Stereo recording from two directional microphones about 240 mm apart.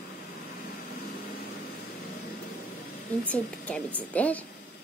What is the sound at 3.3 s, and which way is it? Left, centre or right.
Speech, centre.